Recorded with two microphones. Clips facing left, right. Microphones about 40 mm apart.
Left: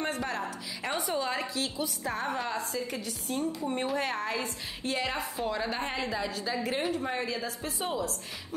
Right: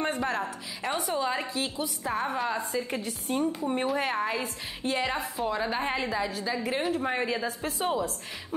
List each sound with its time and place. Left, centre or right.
0.0 s a woman's voice: centre
0.8 s a woman's voice: centre
2.7 s a woman's voice: right
3.6 s a woman's voice: centre
7.0 s a woman's voice: right